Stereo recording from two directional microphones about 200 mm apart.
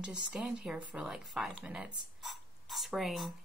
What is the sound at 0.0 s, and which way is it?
A woman's voice, 5° right (ahead or behind).